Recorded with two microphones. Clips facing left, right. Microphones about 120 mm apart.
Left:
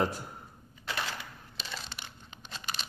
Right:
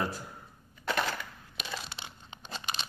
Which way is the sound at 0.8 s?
50° right (ahead or behind).